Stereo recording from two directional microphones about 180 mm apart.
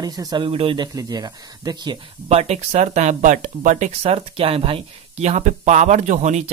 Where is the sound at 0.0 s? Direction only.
20° right (ahead or behind).